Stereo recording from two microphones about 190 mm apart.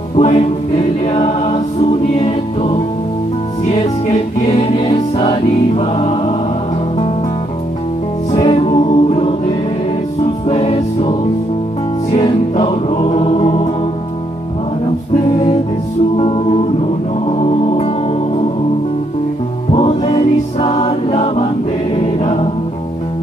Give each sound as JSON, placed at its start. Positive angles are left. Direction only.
{"t": 0.1, "sound": "choir", "side_deg": 35}
{"t": 8.5, "sound": "music", "side_deg": 30}
{"t": 16.2, "sound": "music", "side_deg": 30}
{"t": 19.7, "sound": "music", "side_deg": 25}
{"t": 21.9, "sound": "choir", "side_deg": 30}